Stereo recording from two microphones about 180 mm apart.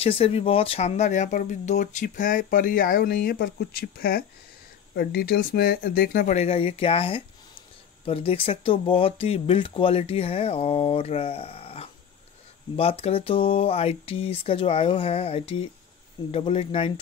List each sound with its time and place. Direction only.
0.0 s speech: 35° left (ahead or behind); by 6.3 s 55° left (ahead or behind)
6.3 s speech: 35° left (ahead or behind)